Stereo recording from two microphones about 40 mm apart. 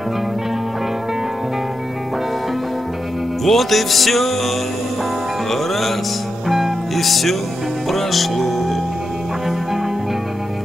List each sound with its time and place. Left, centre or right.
3.4 s music: centre
5.5 s music: centre